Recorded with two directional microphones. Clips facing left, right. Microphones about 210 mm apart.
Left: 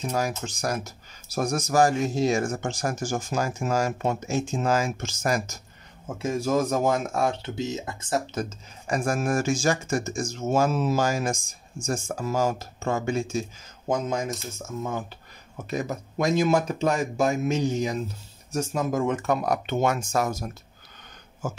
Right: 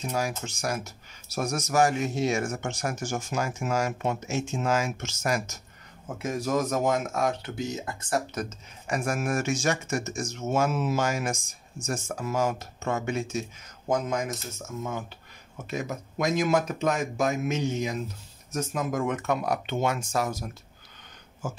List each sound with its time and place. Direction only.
0.1 s speech: 40° left (ahead or behind)